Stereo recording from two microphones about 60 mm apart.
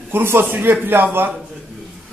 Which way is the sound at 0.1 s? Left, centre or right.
Right.